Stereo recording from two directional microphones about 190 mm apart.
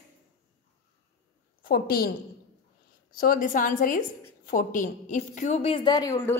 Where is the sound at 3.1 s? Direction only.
45° left (ahead or behind).